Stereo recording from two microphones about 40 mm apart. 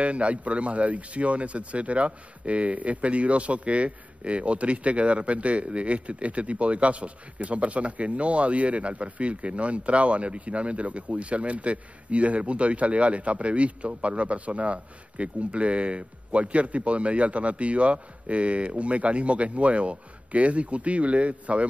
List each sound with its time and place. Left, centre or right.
0.0 s speech: right